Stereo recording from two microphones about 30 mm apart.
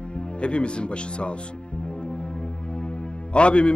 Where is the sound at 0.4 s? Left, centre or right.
Left.